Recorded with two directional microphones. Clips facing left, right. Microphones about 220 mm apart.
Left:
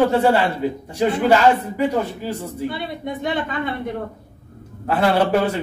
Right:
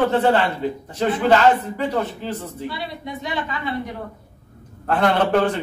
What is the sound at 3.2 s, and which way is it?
Speech, 55° left (ahead or behind).